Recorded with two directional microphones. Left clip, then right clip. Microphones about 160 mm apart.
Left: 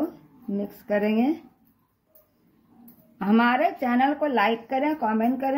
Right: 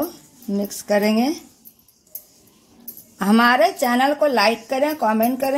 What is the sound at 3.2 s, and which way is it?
Speech, 45° right (ahead or behind).